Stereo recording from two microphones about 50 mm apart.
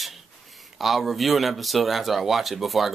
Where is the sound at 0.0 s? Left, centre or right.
Centre.